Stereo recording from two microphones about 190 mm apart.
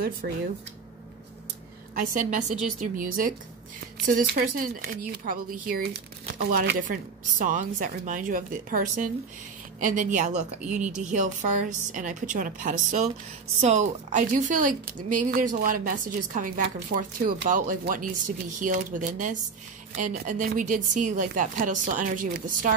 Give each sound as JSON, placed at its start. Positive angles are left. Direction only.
{"t": 2.0, "sound": "a woman's voice", "side_deg": -40}